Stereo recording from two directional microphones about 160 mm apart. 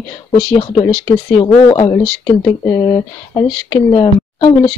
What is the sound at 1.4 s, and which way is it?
A woman's voice, 25° left (ahead or behind).